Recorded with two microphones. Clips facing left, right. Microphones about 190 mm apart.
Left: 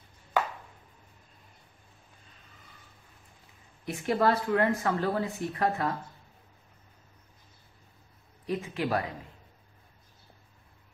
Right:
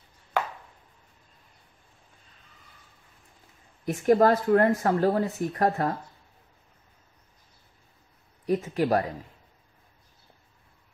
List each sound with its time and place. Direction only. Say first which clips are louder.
3.8 s speech: right 6 dB; 45° right (ahead or behind)
8.5 s speech: right 6 dB; 40° right (ahead or behind)